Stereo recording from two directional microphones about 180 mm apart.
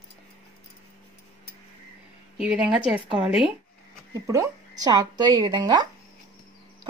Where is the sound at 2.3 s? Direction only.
5° right (ahead or behind).